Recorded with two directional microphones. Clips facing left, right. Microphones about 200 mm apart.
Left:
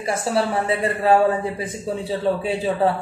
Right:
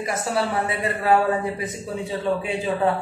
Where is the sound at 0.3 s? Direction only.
30° left (ahead or behind).